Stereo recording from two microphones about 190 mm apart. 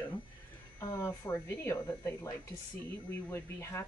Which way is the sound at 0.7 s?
15° left (ahead or behind).